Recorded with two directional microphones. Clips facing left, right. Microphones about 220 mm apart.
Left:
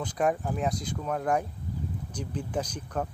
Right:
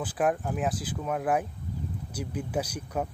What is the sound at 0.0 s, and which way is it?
Speech, 5° right (ahead or behind).